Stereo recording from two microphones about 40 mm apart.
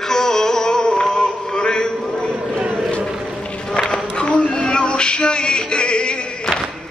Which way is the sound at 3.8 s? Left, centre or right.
Left.